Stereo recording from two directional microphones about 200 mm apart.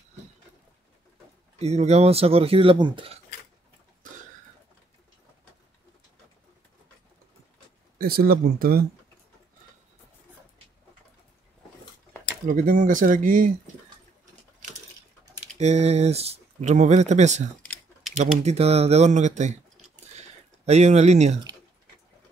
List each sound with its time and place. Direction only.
1.6 s speech: 30° right (ahead or behind)
4.0 s cough: 40° right (ahead or behind)
8.0 s speech: 50° right (ahead or behind)
12.4 s speech: 45° right (ahead or behind)
15.6 s speech: 30° right (ahead or behind)
20.2 s a sound: 35° right (ahead or behind)